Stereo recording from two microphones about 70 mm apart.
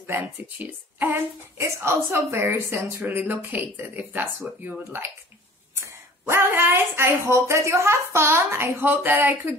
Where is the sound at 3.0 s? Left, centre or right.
Right.